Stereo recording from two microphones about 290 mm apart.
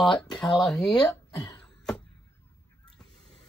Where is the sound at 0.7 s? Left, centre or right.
Centre.